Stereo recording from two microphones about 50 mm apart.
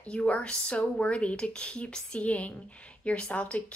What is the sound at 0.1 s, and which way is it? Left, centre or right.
Speech, centre.